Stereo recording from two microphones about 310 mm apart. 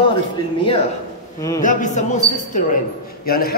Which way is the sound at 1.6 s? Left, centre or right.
Left.